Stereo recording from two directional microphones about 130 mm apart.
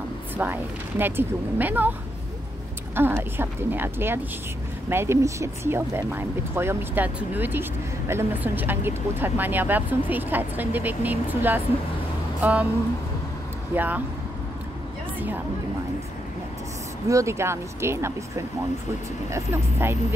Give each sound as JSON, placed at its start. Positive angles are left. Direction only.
{"t": 0.4, "sound": "speech", "side_deg": -15}
{"t": 2.9, "sound": "speech", "side_deg": -15}
{"t": 12.4, "sound": "a sound", "side_deg": -10}
{"t": 13.7, "sound": "speech", "side_deg": -15}
{"t": 15.1, "sound": "a woman's voice", "side_deg": -15}
{"t": 17.1, "sound": "speech", "side_deg": -20}